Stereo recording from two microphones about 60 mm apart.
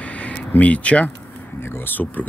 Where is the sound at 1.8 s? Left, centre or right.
Left.